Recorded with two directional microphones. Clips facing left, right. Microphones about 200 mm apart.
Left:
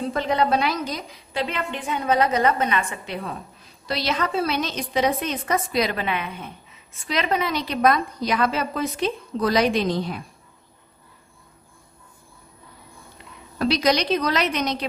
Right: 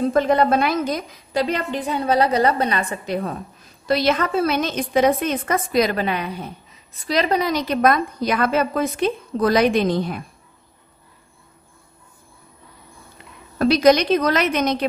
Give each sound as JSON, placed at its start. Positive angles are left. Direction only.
{"t": 0.0, "sound": "a woman's voice", "side_deg": -50}
{"t": 3.8, "sound": "a woman's voice", "side_deg": -50}
{"t": 13.6, "sound": "a woman's voice", "side_deg": -50}